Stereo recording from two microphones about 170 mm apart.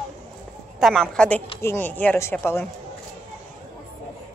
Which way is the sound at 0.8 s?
Centre (ahead or behind).